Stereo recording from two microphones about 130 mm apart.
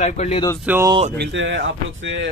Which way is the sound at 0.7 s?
10° right (ahead or behind).